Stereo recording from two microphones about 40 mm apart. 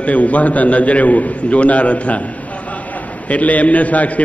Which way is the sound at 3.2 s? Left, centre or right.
Left.